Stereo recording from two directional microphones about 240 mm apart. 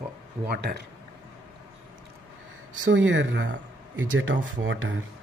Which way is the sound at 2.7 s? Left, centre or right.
Right.